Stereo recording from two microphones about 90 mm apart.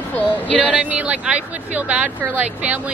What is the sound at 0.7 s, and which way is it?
Speech, 15° right (ahead or behind).